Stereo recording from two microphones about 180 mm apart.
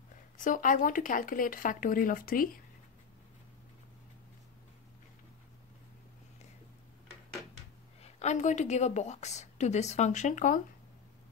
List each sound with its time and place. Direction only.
0.4 s speech: 45° left (ahead or behind)
8.0 s a woman's voice: 40° left (ahead or behind)